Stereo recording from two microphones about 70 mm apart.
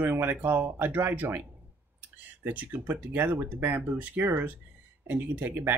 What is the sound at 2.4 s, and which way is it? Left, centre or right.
Speech, right.